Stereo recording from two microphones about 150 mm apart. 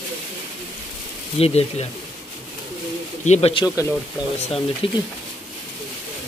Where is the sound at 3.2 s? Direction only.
45° left (ahead or behind).